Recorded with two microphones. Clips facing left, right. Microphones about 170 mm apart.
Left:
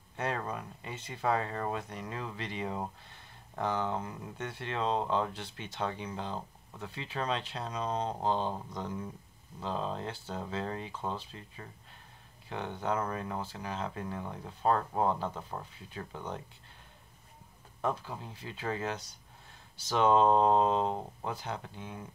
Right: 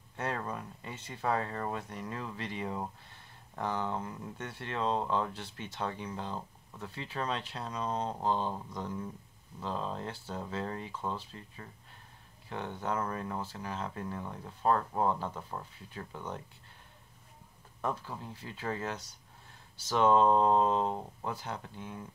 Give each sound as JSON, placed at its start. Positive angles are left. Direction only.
{"t": 0.5, "sound": "speech", "side_deg": 20}
{"t": 17.8, "sound": "speech", "side_deg": 20}